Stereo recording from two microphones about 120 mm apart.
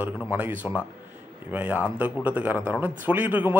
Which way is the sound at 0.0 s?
15° right (ahead or behind).